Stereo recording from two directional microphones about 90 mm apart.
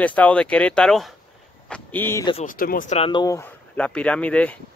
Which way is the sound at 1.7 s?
20° left (ahead or behind).